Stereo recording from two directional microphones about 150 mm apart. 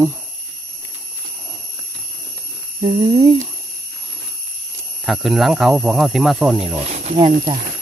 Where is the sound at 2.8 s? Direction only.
30° right (ahead or behind).